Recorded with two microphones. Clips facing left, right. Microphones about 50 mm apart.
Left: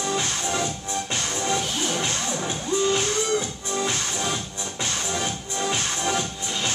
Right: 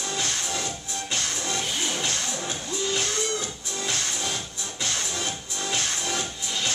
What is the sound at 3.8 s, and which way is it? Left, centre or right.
Music, centre.